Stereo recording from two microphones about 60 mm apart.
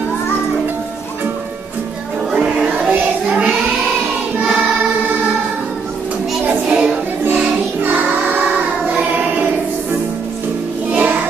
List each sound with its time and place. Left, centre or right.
2.3 s music: centre
6.7 s music: centre
7.8 s music: right
10.9 s music: right